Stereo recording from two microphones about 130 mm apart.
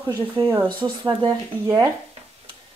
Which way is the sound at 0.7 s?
35° right (ahead or behind).